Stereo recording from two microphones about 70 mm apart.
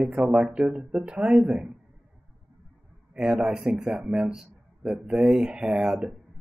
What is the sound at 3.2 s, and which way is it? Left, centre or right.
Speech, centre.